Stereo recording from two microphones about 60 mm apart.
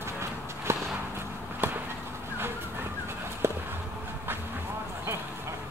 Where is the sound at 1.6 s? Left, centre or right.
Right.